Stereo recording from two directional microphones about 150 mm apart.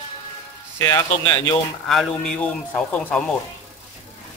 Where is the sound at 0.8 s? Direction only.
15° left (ahead or behind).